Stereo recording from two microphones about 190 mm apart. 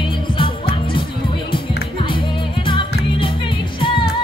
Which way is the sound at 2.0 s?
25° left (ahead or behind).